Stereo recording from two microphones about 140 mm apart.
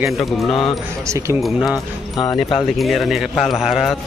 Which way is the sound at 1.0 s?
20° right (ahead or behind).